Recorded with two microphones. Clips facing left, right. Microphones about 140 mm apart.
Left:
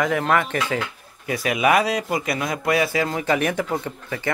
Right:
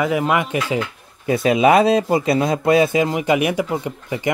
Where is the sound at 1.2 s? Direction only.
25° right (ahead or behind).